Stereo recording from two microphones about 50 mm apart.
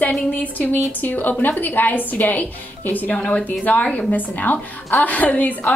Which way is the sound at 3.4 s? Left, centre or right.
Left.